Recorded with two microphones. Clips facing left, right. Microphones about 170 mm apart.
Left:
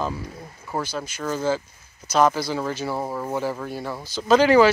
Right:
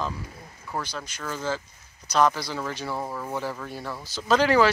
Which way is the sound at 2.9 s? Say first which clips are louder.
Left 4 dB; 25° left (ahead or behind).